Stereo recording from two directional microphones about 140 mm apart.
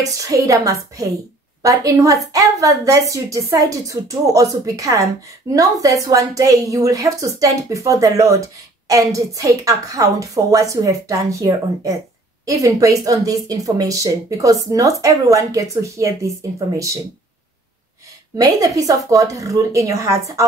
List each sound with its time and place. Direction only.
0.0 s a woman's voice: 25° right (ahead or behind)
18.3 s a woman's voice: 25° right (ahead or behind)